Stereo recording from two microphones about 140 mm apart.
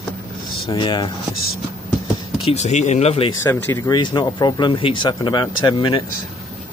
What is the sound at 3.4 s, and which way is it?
Speech, 25° left (ahead or behind).